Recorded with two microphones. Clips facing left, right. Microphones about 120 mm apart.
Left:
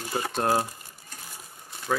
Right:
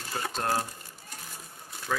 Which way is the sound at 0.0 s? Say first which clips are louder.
Left 5 dB; 15° left (ahead or behind).